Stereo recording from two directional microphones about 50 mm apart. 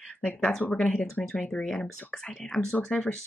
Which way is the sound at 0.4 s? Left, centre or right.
Centre.